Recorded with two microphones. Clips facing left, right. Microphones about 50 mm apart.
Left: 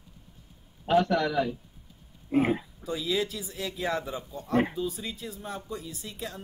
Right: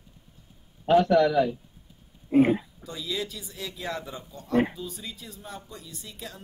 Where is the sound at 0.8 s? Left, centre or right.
Centre.